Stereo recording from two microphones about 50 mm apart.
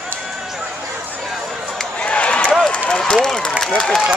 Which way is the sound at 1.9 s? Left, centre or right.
Left.